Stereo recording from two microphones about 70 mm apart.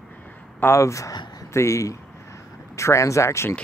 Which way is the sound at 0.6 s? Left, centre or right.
Left.